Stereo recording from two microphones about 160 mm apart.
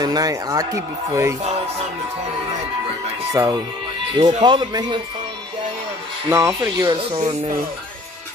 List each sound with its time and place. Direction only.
0.0 s speech: 25° right (ahead or behind)
3.3 s speech: 20° right (ahead or behind)
6.3 s speech: 20° right (ahead or behind)
7.1 s speech: 40° right (ahead or behind)